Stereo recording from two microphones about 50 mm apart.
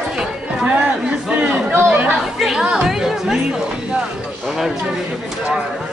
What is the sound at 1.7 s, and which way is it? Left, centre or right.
Speech, right.